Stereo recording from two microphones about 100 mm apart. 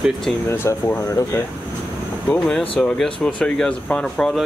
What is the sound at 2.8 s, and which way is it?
Speech, 5° left (ahead or behind).